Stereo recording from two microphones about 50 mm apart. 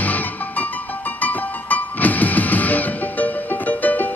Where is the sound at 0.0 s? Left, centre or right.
Left.